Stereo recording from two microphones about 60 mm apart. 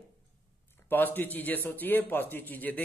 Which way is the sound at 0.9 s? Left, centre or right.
Left.